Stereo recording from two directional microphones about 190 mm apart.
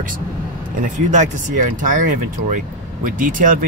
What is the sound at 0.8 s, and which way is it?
Speech, 40° right (ahead or behind).